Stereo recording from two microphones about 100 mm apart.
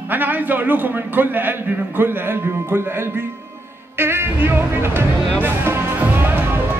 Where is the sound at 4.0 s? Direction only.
25° right (ahead or behind).